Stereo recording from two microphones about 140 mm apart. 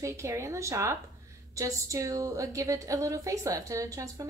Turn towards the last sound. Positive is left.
turn(degrees=-25)  # may be behind; listen again after turning